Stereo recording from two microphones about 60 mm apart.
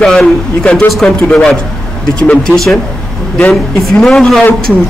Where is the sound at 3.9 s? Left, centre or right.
Centre.